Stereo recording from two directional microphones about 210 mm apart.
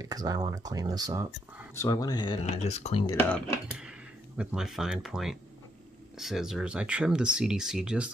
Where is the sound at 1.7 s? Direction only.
15° left (ahead or behind); by 3.0 s 30° left (ahead or behind).